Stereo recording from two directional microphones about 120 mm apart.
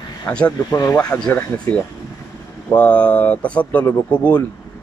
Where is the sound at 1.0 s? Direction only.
10° left (ahead or behind).